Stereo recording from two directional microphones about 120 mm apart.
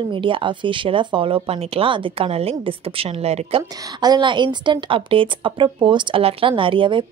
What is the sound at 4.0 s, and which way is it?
Speech, 40° right (ahead or behind).